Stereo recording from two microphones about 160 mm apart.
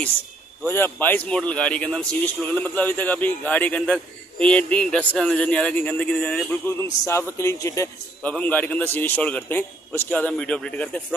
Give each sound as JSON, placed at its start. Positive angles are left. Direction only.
{"t": 0.7, "sound": "speech", "side_deg": 15}
{"t": 6.8, "sound": "speech", "side_deg": 15}